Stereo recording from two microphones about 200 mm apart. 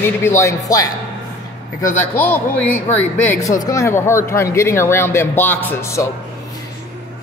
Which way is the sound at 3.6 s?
15° left (ahead or behind).